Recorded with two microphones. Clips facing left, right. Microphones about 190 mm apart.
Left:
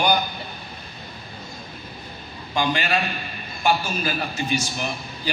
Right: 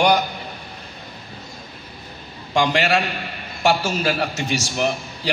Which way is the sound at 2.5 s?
80° right.